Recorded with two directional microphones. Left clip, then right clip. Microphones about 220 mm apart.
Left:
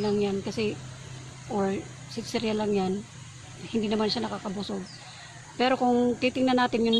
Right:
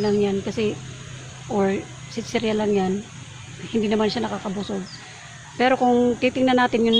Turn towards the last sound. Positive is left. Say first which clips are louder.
# right 6 dB
turn(degrees=5)  # may be behind; listen again after turning